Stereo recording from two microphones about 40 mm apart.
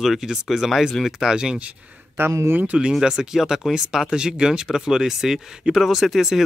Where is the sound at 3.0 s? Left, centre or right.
Centre.